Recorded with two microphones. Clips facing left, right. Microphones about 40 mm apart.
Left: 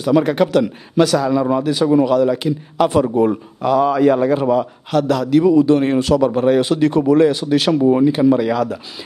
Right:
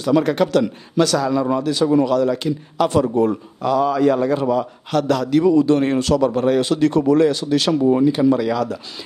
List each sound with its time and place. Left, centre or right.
0.0 s a man's voice: centre
4.9 s a man's voice: centre